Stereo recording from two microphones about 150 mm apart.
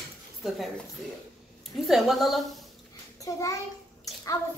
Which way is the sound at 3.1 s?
20° left (ahead or behind).